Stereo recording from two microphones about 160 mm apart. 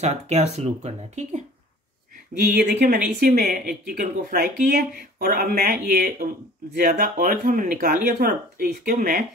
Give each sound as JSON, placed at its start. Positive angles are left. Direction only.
{"t": 0.0, "sound": "speech", "side_deg": -45}
{"t": 2.5, "sound": "speech", "side_deg": -90}
{"t": 3.2, "sound": "speech", "side_deg": -60}
{"t": 3.9, "sound": "speech", "side_deg": -60}